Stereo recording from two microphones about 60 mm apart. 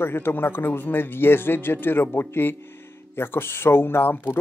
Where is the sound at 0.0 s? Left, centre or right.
Left.